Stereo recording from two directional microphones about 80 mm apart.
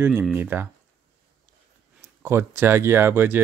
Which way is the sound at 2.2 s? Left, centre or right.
Right.